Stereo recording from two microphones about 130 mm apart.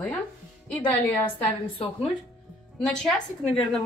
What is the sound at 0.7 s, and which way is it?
Speech, 15° left (ahead or behind).